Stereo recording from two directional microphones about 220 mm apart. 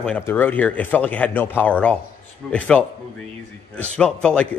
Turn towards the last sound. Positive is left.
turn(degrees=5)  # may be behind; listen again after turning